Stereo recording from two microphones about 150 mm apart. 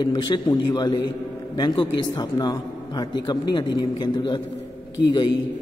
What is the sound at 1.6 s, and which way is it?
A man's voice, 30° left (ahead or behind).